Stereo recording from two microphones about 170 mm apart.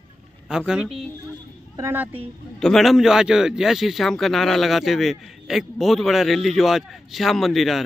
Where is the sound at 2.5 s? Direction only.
Centre (ahead or behind).